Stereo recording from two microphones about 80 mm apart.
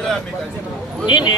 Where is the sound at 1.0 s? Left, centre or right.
Left.